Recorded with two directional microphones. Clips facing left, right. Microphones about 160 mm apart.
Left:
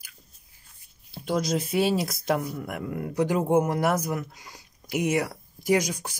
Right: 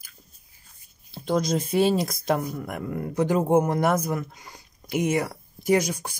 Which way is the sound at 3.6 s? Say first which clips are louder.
Right 2 dB; 5° left (ahead or behind).